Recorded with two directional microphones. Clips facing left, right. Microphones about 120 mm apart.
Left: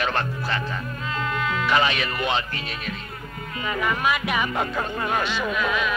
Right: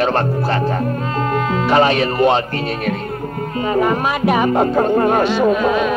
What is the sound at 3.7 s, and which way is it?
Speech, 40° right (ahead or behind).